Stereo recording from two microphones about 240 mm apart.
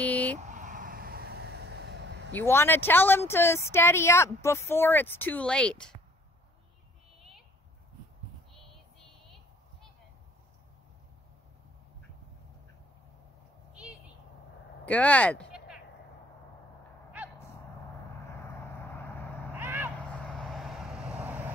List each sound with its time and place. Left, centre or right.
0.0 s vehicle: centre
0.4 s vehicle: right
2.3 s speech: centre
13.7 s a sound: centre
14.9 s speech: centre
18.3 s vehicle: centre
19.5 s vehicle: centre